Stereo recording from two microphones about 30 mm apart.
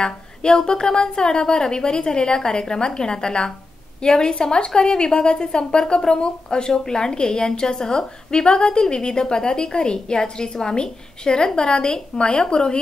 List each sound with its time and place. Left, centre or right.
0.0 s a woman's voice: left